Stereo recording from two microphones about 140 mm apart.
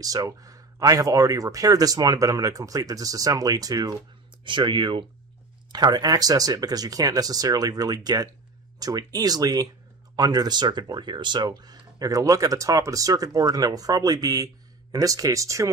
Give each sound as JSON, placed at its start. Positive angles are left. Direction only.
{"t": 0.0, "sound": "speech", "side_deg": -25}